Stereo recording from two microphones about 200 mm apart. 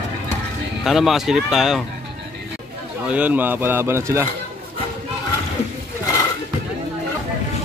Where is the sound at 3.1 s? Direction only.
10° right (ahead or behind).